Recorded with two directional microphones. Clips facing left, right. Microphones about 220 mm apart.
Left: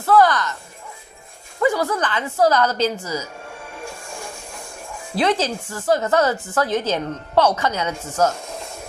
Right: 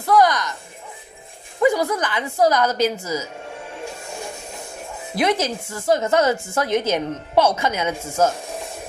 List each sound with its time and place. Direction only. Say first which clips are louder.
0.0 s speech: left 1 dB; 15° right (ahead or behind)
1.6 s a woman's voice: right 1 dB; 15° right (ahead or behind)
3.8 s music: right 2 dB; 20° right (ahead or behind)
5.4 s a woman's voice: left 1 dB; 20° right (ahead or behind)
6.3 s a woman's voice: even; 10° right (ahead or behind)